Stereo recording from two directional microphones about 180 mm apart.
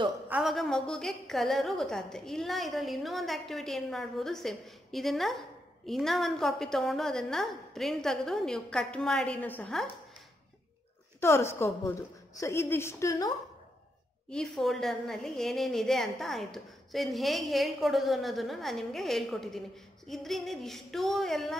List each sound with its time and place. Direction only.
0.3 s a woman's voice: centre (ahead or behind)
11.1 s a woman's voice: 15° left (ahead or behind)
14.3 s a woman's voice: centre (ahead or behind)